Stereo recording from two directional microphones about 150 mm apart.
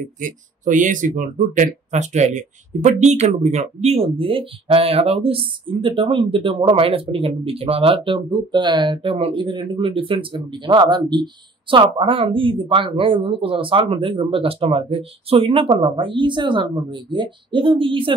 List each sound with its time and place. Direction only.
0.2 s speech: 60° right (ahead or behind); by 18.1 s 35° right (ahead or behind)